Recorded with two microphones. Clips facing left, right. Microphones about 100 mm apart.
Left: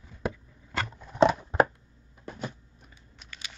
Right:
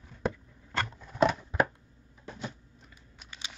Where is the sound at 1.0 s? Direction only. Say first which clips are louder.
Left 4 dB; 15° left (ahead or behind).